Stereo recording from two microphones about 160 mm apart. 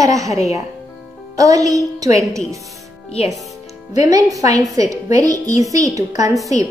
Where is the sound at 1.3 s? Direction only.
20° right (ahead or behind).